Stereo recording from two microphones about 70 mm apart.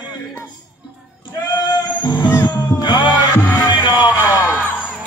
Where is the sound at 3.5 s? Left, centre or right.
Left.